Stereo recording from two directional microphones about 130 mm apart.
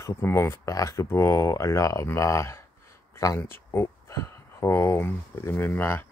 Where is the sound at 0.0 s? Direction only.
20° left (ahead or behind).